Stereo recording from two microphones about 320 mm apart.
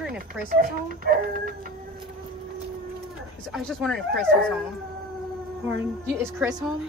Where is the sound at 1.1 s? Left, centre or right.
Right.